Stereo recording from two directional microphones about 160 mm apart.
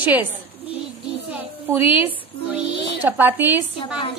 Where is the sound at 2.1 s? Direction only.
10° right (ahead or behind).